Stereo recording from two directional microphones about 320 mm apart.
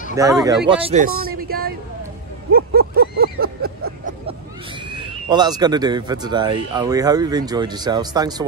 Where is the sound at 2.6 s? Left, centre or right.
Right.